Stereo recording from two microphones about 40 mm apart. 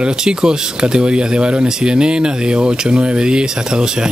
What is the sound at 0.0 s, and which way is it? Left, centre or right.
Speech, right.